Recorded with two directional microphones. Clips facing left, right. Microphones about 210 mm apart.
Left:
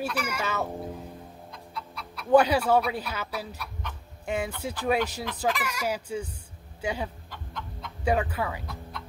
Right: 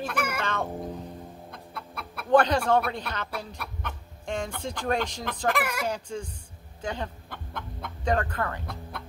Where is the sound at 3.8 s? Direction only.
55° right (ahead or behind).